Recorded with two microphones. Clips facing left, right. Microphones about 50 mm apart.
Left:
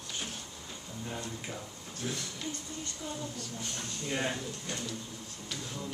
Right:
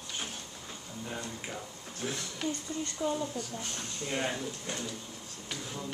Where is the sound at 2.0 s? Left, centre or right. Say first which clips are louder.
Right 3 dB; right.